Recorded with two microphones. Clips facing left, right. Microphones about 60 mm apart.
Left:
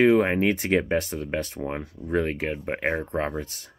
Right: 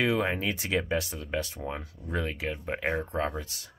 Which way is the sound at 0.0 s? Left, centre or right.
Left.